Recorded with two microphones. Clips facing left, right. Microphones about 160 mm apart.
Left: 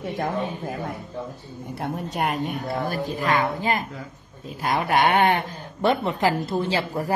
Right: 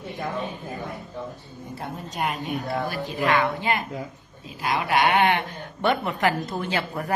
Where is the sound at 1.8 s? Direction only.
70° left (ahead or behind).